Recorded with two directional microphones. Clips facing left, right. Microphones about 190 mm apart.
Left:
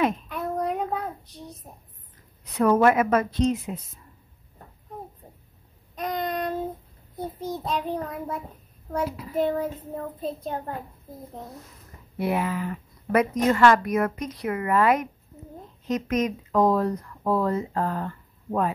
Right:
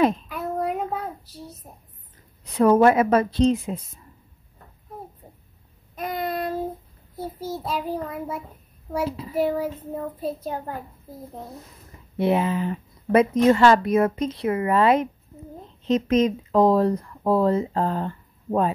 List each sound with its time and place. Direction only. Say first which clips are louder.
0.3 s child singing: right 1 dB; 5° right (ahead or behind)
2.5 s speech: right 3 dB; 30° right (ahead or behind)
5.9 s child singing: right 1 dB; 5° right (ahead or behind)
7.2 s a child's voice: right 1 dB; 5° right (ahead or behind)
9.0 s speech: right 3 dB; 30° right (ahead or behind)
9.3 s child singing: right 1 dB; 10° right (ahead or behind)
9.8 s a child's voice: right 3 dB; 5° right (ahead or behind)
12.2 s speech: right 4 dB; 25° right (ahead or behind)